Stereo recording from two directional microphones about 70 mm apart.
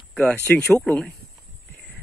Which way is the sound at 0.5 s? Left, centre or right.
Centre.